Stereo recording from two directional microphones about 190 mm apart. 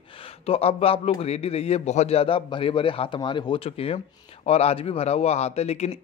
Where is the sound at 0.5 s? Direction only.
30° left (ahead or behind).